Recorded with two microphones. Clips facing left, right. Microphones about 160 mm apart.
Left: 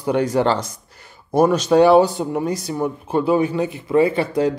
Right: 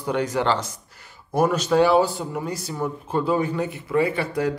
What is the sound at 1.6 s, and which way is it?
Speech, 20° left (ahead or behind).